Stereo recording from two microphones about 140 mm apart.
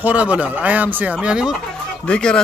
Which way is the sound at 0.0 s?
10° right (ahead or behind).